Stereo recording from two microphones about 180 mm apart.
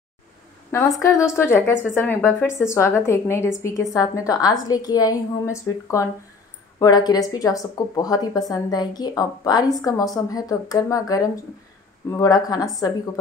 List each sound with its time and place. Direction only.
0.7 s speech: 15° left (ahead or behind)